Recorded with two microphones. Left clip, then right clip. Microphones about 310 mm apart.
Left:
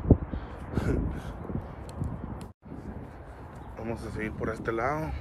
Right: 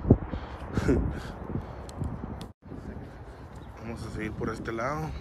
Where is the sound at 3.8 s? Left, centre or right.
Centre.